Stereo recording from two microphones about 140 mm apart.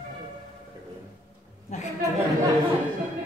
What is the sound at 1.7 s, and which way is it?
Speech, 60° left (ahead or behind).